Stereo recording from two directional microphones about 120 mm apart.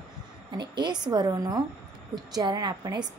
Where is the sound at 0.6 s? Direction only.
40° right (ahead or behind).